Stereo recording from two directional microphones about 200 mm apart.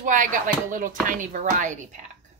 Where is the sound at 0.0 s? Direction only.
40° right (ahead or behind).